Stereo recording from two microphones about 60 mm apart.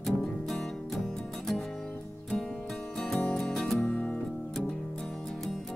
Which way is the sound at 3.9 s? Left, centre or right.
Left.